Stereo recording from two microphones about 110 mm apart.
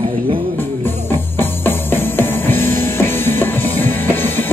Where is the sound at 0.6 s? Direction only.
20° left (ahead or behind).